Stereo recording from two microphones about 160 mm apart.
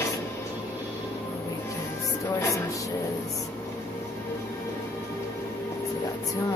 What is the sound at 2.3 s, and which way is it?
Music, 20° left (ahead or behind).